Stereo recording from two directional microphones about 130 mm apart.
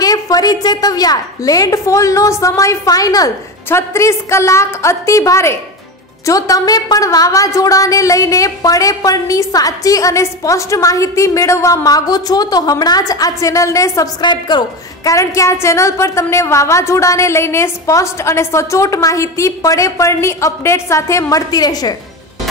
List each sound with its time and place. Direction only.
0.0 s a woman's voice: 30° left (ahead or behind)
14.2 s a woman's voice: 35° left (ahead or behind)
15.0 s a woman's voice: 25° left (ahead or behind)